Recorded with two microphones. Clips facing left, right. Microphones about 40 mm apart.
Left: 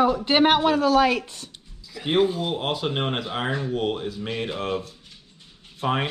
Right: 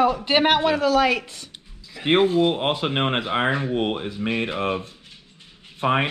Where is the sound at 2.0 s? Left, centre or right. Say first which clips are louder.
Right 4 dB; right.